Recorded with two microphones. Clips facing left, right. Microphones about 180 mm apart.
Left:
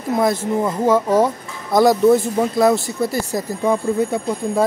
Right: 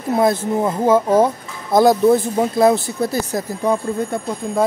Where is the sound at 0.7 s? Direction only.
10° right (ahead or behind).